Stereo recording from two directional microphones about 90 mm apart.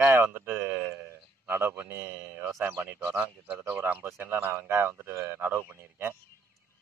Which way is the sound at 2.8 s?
30° right (ahead or behind).